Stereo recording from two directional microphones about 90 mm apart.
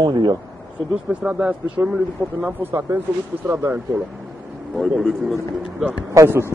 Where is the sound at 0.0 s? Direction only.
55° right (ahead or behind).